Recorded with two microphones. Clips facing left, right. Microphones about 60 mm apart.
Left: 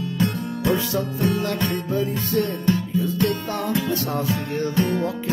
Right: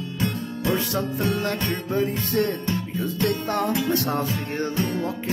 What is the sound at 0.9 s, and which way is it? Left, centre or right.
Music, right.